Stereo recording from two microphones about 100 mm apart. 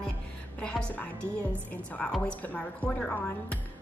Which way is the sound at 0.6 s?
10° left (ahead or behind).